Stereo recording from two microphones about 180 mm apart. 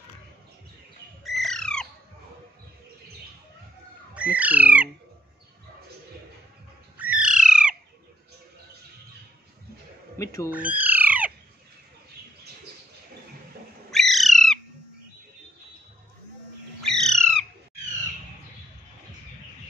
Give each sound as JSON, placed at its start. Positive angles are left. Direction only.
{"t": 1.2, "sound": "squawk", "side_deg": 0}
{"t": 4.1, "sound": "bird", "side_deg": -5}
{"t": 7.0, "sound": "bird", "side_deg": -5}
{"t": 10.1, "sound": "speech", "side_deg": 15}
{"t": 10.5, "sound": "bird", "side_deg": -10}
{"t": 13.8, "sound": "bird", "side_deg": 0}
{"t": 16.8, "sound": "bird", "side_deg": 5}